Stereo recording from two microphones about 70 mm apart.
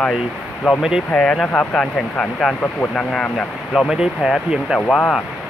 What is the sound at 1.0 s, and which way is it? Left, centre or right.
Speech, centre.